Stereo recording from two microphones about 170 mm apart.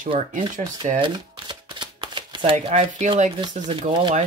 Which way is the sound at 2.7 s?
45° right (ahead or behind).